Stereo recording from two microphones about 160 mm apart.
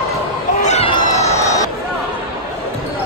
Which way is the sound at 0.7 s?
40° left (ahead or behind).